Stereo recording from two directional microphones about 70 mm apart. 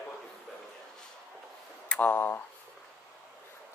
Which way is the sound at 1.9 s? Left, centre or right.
Left.